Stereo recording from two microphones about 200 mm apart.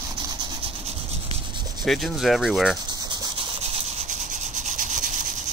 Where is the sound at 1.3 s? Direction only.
25° right (ahead or behind).